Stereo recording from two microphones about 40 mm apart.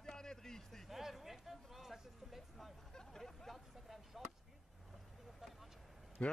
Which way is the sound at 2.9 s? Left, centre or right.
Centre.